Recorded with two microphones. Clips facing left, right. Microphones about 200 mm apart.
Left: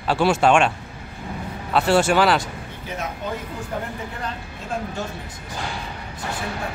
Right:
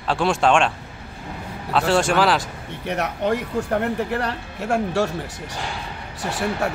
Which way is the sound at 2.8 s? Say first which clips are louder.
Right 7 dB; 70° right (ahead or behind).